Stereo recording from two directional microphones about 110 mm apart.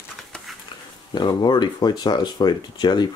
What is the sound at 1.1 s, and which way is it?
Speech, 40° left (ahead or behind).